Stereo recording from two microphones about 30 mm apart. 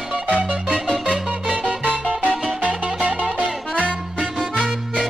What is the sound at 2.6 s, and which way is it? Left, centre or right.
Music, right.